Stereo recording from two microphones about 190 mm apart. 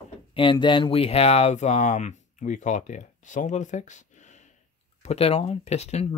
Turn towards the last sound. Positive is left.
turn(degrees=35)  # may be behind; listen again after turning